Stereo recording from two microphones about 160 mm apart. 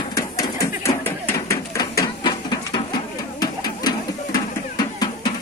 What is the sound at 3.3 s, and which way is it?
Music, 25° left (ahead or behind).